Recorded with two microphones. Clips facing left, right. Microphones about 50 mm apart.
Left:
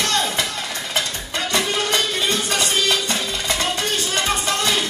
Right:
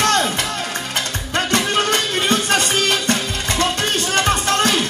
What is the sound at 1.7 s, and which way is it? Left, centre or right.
Music, right.